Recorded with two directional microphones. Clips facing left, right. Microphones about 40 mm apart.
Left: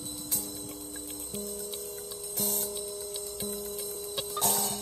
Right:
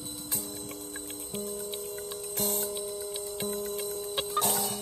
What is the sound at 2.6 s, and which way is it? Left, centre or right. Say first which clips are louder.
Music: right 3 dB; right.